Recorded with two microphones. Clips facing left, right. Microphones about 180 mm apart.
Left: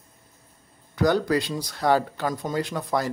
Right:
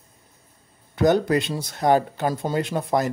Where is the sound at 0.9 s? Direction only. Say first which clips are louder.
Right 3 dB; 20° right (ahead or behind).